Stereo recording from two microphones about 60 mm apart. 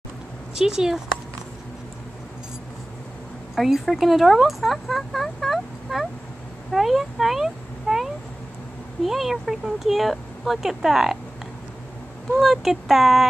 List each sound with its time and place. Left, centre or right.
0.6 s speech: centre
3.5 s speech: centre
6.7 s a sound: centre
9.0 s speech: centre
12.4 s speech: centre